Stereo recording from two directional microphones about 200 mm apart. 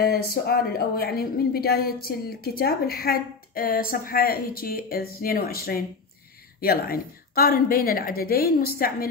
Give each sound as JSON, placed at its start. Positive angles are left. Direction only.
{"t": 0.0, "sound": "a woman's voice", "side_deg": 50}